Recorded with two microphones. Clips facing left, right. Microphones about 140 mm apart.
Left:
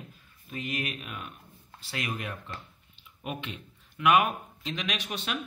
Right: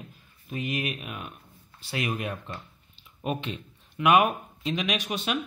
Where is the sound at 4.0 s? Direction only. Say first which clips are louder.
Right 3 dB; 20° right (ahead or behind).